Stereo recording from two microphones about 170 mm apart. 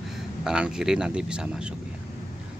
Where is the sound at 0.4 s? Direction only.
5° right (ahead or behind).